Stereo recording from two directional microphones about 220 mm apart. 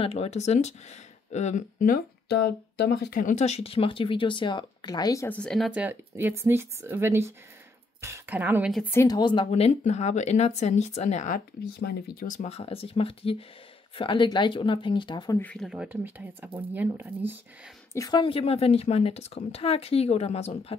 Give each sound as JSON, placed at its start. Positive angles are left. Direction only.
{"t": 0.0, "sound": "a woman's voice", "side_deg": 25}
{"t": 8.9, "sound": "a woman's voice", "side_deg": 15}
{"t": 12.4, "sound": "speech", "side_deg": 25}
{"t": 15.3, "sound": "a woman's voice", "side_deg": 5}
{"t": 17.9, "sound": "speech", "side_deg": 20}